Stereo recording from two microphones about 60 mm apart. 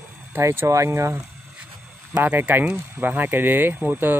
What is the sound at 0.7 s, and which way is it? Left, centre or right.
Speech, right.